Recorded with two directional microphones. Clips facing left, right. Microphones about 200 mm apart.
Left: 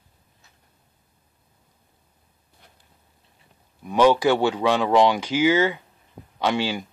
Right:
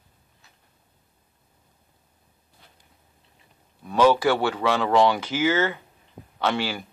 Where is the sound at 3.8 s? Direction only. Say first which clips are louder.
Left 1 dB; 15° left (ahead or behind).